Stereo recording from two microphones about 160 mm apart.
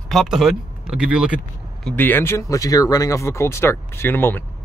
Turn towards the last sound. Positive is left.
turn(degrees=15)  # may be behind; listen again after turning